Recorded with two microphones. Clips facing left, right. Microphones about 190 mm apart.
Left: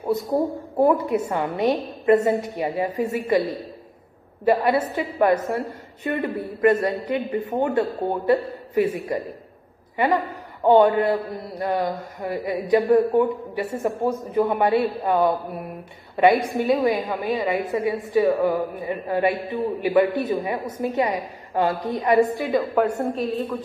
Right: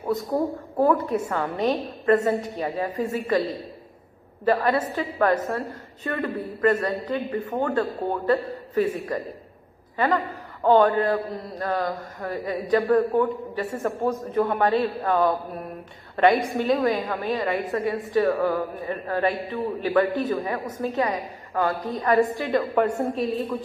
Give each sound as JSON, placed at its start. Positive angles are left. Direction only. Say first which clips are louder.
{"t": 0.3, "sound": "a man's voice", "louder": "left 2 dB", "side_deg": 20}
{"t": 4.5, "sound": "a man's voice", "louder": "left 2 dB", "side_deg": 15}
{"t": 16.2, "sound": "a woman's voice", "louder": "left 2 dB", "side_deg": 0}
{"t": 16.8, "sound": "a man's voice", "louder": "left 2 dB", "side_deg": 15}
{"t": 17.7, "sound": "a man's voice", "louder": "left 2 dB", "side_deg": 15}
{"t": 22.4, "sound": "a woman's voice", "louder": "left 1 dB", "side_deg": 0}